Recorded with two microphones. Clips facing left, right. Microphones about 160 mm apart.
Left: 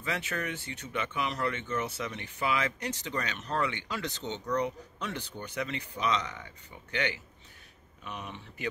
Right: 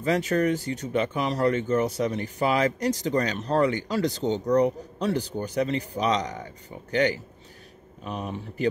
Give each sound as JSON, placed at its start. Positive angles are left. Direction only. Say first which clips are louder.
{"t": 0.0, "sound": "speech", "louder": "right 12 dB", "side_deg": -40}